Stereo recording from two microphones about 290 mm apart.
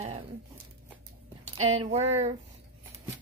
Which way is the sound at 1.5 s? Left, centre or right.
Right.